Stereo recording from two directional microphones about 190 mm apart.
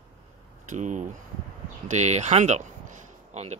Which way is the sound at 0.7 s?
40° right (ahead or behind).